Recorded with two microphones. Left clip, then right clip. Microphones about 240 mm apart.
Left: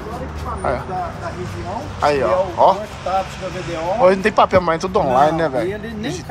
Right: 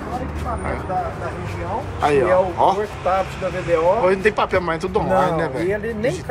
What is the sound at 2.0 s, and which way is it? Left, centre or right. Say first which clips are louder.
Speech: even; centre.